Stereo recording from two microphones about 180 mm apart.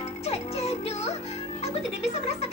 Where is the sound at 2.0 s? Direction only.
35° left (ahead or behind).